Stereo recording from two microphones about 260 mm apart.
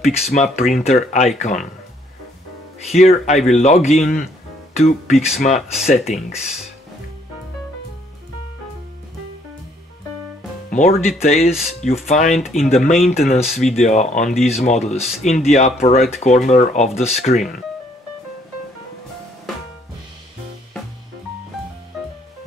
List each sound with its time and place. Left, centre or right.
0.0 s speech: left
3.0 s speech: left
10.7 s speech: left
11.3 s speech: centre
11.8 s speech: left
12.4 s speech: centre
13.3 s speech: left